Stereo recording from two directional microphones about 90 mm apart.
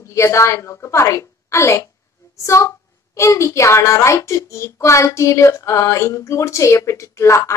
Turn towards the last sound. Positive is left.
turn(degrees=35)  # may be behind; listen again after turning